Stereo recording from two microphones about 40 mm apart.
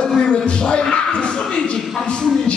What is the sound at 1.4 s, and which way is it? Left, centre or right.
Speech, centre.